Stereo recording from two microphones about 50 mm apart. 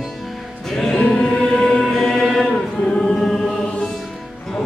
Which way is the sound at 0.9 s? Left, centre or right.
Left.